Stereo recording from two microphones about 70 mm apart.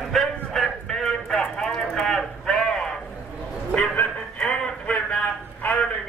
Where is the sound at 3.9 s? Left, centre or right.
Centre.